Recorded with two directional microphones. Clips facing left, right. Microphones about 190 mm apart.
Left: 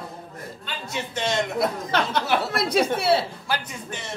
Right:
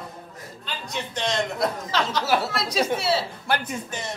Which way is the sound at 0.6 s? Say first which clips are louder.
Even; 5° left (ahead or behind).